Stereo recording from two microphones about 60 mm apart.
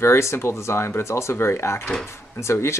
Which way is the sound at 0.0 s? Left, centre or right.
Left.